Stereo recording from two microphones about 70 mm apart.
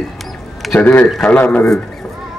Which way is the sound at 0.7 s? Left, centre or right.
Left.